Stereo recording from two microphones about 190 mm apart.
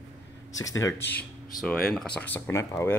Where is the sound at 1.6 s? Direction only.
Centre (ahead or behind).